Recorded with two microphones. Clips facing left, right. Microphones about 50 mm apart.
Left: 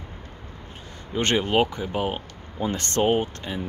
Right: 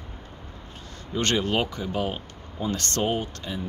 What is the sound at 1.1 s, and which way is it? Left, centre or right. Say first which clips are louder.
Speech: left 3 dB; left.